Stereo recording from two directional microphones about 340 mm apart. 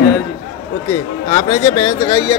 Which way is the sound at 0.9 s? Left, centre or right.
Centre.